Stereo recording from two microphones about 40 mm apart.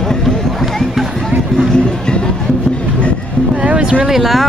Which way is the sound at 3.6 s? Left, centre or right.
Right.